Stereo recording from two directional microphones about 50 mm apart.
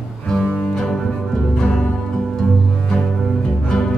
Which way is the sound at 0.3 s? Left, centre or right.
Centre.